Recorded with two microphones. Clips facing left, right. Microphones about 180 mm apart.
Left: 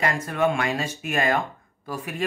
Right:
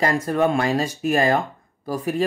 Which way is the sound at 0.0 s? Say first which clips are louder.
Right 4 dB; 35° right (ahead or behind).